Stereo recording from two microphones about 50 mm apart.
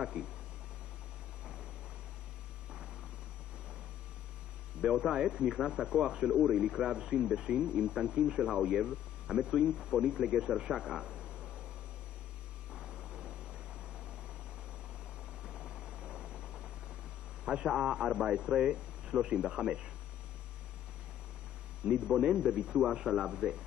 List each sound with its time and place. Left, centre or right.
0.0 s speech: centre
4.8 s speech: centre
10.7 s speech: centre
12.7 s vehicle: centre
15.4 s helicopter: centre
17.5 s speech: centre
21.8 s speech: centre